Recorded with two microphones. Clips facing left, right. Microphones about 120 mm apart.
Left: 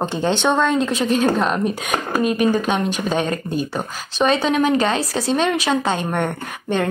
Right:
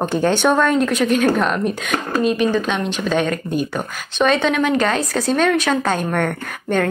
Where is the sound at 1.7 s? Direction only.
40° left (ahead or behind).